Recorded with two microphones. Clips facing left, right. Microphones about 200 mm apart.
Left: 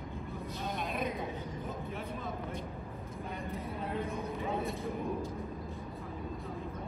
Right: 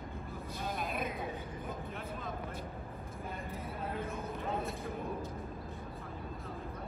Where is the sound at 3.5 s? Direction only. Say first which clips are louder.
Left 3 dB; centre (ahead or behind).